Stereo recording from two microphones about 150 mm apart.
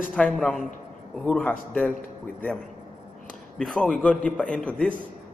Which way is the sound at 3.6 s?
5° left (ahead or behind).